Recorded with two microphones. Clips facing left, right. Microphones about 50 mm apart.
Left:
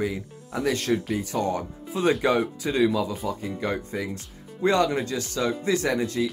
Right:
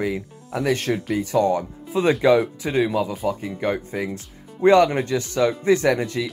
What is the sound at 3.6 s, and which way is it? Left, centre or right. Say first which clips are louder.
Speech: right 5 dB; right.